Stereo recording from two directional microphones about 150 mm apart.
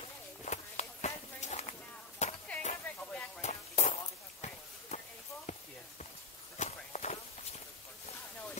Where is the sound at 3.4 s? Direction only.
50° left (ahead or behind).